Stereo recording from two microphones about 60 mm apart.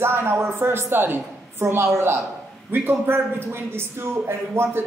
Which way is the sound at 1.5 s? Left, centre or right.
Right.